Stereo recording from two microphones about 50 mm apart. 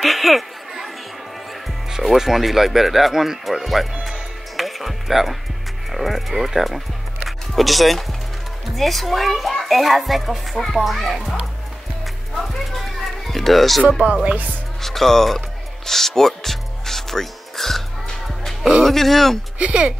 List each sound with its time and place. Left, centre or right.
0.0 s chatter: centre
2.1 s speech: centre
4.0 s music: centre
5.9 s speech: centre
12.4 s music: centre
14.2 s speech: right
14.8 s music: centre
18.9 s speech: centre
19.6 s speech: right